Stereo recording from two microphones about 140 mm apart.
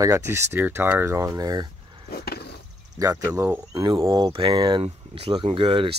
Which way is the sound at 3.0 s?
25° right (ahead or behind).